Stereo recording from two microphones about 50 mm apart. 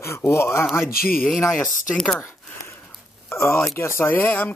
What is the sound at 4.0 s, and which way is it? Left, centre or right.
Speech, left.